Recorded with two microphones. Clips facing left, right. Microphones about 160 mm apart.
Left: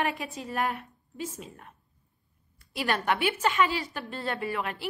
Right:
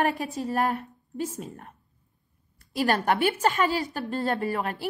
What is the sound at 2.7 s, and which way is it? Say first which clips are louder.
A woman's voice: right 4 dB; 40° right (ahead or behind).